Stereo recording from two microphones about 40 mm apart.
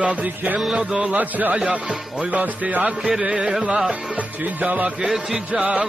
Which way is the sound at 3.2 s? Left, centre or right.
Right.